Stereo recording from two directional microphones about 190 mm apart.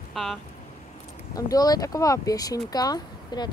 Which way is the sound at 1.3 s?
20° left (ahead or behind).